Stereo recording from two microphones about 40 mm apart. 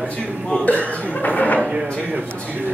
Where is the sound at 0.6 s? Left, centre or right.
Left.